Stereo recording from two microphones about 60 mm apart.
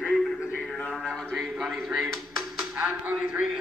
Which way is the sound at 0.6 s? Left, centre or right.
Centre.